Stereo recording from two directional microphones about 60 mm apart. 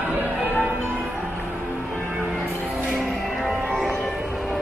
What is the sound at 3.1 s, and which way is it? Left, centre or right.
Music, centre.